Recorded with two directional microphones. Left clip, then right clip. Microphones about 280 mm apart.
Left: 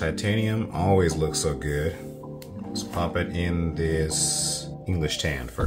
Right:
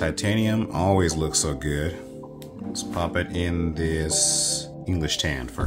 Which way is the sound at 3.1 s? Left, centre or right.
Right.